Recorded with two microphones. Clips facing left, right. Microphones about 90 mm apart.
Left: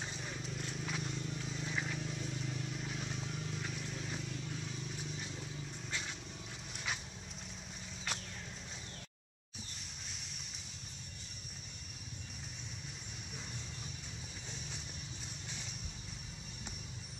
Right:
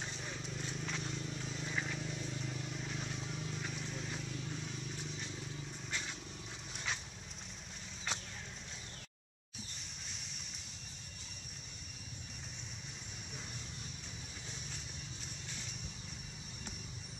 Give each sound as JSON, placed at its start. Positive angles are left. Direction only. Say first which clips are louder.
{"t": 0.0, "sound": "horse", "louder": "left 1 dB", "side_deg": 0}
{"t": 6.7, "sound": "dog", "louder": "even", "side_deg": 0}